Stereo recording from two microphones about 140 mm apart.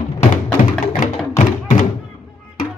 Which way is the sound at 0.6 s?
65° left (ahead or behind).